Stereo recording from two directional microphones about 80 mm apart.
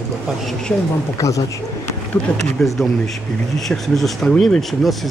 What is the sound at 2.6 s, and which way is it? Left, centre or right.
Speech, centre.